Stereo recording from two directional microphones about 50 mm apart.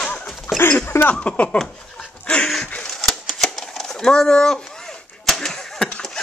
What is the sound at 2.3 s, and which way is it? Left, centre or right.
Dog, left.